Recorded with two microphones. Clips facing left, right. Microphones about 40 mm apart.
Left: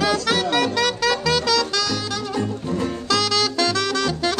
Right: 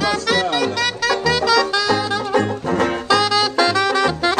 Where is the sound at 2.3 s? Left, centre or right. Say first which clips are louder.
Right 7 dB; right.